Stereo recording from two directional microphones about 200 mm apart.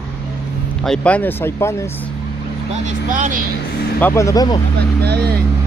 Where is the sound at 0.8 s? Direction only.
5° left (ahead or behind).